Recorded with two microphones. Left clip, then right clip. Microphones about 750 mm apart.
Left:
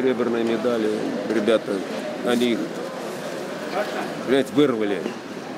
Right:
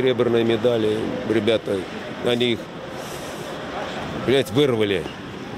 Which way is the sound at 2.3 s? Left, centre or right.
Right.